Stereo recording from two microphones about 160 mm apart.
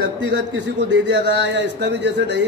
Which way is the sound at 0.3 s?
90° right.